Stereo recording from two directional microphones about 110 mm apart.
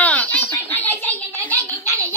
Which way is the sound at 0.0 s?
15° left (ahead or behind).